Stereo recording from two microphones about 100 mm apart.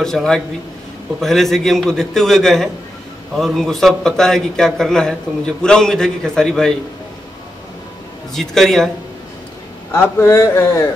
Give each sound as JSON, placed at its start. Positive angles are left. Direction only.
{"t": 0.0, "sound": "a man's voice", "side_deg": 5}
{"t": 8.3, "sound": "a man's voice", "side_deg": 5}
{"t": 9.9, "sound": "speech", "side_deg": 25}